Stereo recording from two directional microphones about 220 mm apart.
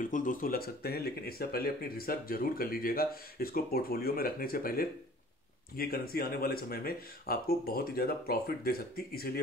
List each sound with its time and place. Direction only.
0.0 s speech: 35° left (ahead or behind)